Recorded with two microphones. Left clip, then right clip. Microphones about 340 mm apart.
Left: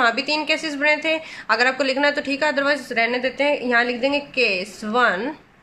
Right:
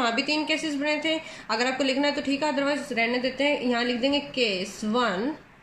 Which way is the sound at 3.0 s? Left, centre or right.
Left.